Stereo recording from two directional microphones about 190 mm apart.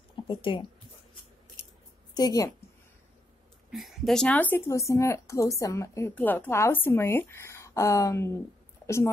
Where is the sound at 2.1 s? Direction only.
20° left (ahead or behind).